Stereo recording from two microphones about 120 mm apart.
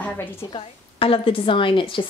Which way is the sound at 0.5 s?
45° left (ahead or behind).